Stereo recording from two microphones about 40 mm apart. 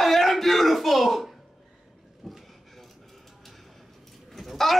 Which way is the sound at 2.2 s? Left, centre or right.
Centre.